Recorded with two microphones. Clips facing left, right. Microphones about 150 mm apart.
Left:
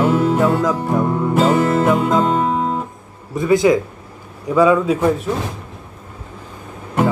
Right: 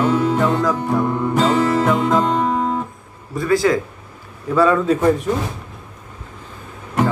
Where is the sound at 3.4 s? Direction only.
20° left (ahead or behind).